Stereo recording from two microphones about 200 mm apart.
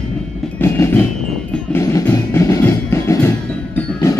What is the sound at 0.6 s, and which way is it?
Music, 15° left (ahead or behind).